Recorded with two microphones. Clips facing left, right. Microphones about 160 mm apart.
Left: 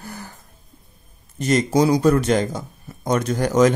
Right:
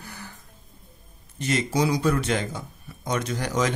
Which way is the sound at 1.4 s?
45° left (ahead or behind).